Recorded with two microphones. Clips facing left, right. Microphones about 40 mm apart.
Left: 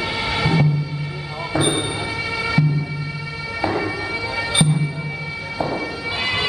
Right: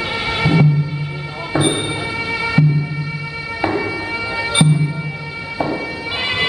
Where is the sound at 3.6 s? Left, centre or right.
Right.